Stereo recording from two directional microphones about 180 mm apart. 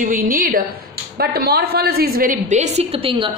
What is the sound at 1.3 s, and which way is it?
A woman's voice, 60° right (ahead or behind).